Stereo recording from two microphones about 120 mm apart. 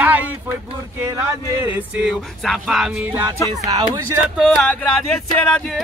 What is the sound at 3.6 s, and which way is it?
Speech, 35° right (ahead or behind).